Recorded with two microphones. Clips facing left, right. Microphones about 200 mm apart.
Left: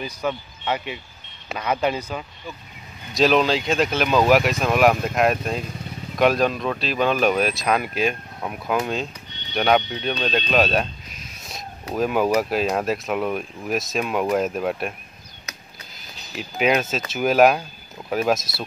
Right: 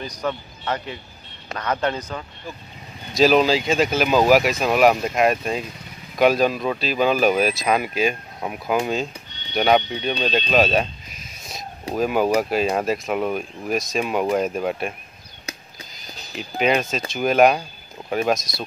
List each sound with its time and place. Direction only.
0.0 s speech: 5° left (ahead or behind)
3.2 s speech: centre (ahead or behind)
15.5 s a sound: 30° right (ahead or behind)
16.0 s speech: centre (ahead or behind)